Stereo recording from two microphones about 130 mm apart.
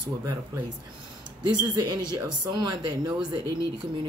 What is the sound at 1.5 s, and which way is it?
Speech, 35° right (ahead or behind).